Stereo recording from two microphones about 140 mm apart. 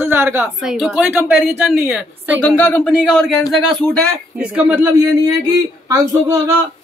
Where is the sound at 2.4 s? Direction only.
10° left (ahead or behind).